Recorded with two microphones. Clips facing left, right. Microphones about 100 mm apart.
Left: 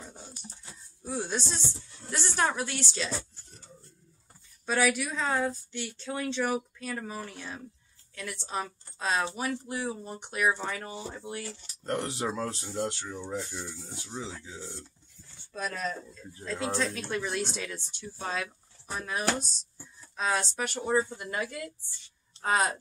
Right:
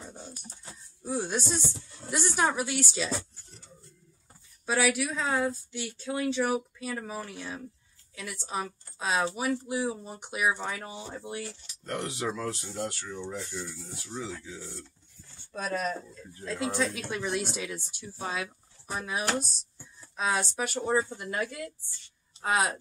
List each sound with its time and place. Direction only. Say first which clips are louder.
1.0 s speech: right 2 dB; 10° right (ahead or behind)
4.6 s a woman's voice: even; 5° right (ahead or behind)
11.8 s speech: left 1 dB; 35° left (ahead or behind)
15.5 s speech: right 3 dB; 15° right (ahead or behind)